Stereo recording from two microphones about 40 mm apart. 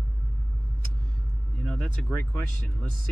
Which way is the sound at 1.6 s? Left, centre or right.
Centre.